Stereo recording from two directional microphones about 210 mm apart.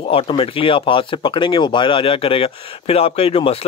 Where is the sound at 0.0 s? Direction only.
25° left (ahead or behind).